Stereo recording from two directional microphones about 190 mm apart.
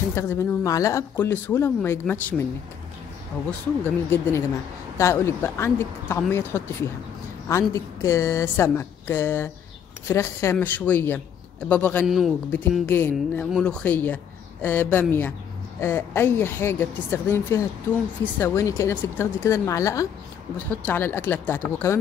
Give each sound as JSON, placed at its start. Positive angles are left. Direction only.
{"t": 0.1, "sound": "speech", "side_deg": 15}
{"t": 12.1, "sound": "a man's voice", "side_deg": 0}
{"t": 12.8, "sound": "speech", "side_deg": 10}